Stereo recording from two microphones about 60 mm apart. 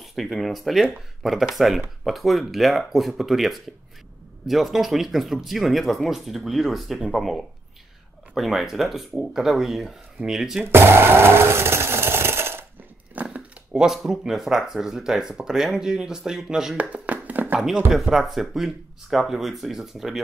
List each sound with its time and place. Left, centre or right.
0.0 s speech: centre
10.7 s a sound: right
13.1 s dog: right
13.7 s speech: centre
16.7 s a sound: right
17.9 s speech: centre